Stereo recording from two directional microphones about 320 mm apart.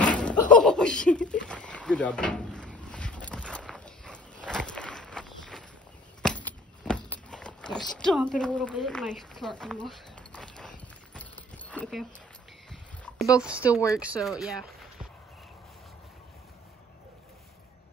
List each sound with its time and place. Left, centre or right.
0.5 s a sound: centre
13.7 s speech: centre
13.9 s speech: centre